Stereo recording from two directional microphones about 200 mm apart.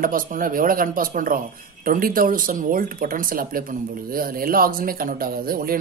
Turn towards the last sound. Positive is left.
turn(degrees=-45)  # may be behind; listen again after turning